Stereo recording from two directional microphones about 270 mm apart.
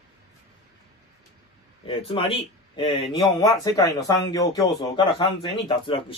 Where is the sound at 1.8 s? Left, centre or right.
Centre.